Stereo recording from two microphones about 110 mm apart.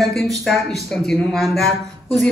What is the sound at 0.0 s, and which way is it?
Speech, centre (ahead or behind).